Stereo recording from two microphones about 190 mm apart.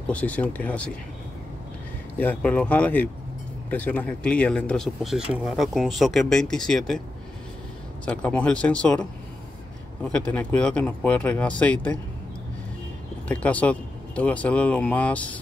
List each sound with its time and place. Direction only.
0.1 s speech: 5° left (ahead or behind)
2.1 s speech: 10° left (ahead or behind)
8.0 s speech: 5° left (ahead or behind)
10.0 s speech: 5° left (ahead or behind)
13.3 s speech: 5° left (ahead or behind)